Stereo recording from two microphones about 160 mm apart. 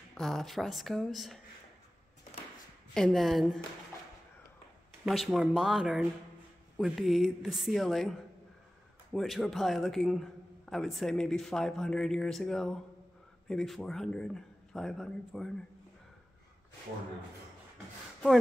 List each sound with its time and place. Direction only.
0.1 s a man's voice: centre (ahead or behind)
2.9 s a man's voice: centre (ahead or behind)
5.0 s a man's voice: centre (ahead or behind)